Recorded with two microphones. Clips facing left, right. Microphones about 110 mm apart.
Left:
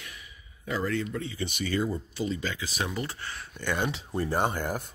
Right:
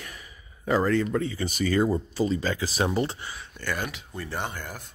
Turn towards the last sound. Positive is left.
turn(degrees=45)  # may be behind; listen again after turning